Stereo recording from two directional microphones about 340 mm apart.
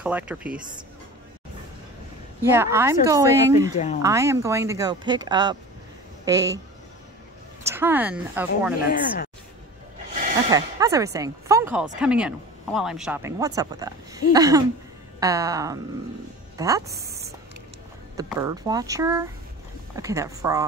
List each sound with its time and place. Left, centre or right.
0.0 s speech: centre
2.5 s speech: centre
3.7 s speech: left
4.0 s a woman's voice: centre
7.6 s speech: centre
10.5 s speech: centre
17.0 s a sound: centre
18.1 s speech: centre